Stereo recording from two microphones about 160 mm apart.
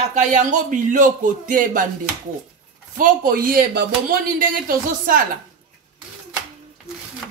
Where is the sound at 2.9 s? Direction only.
60° right (ahead or behind).